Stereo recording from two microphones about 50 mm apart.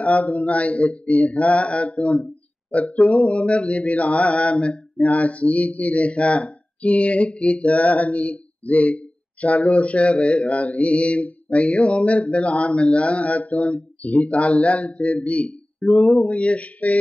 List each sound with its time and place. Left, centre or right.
0.0 s mantra: left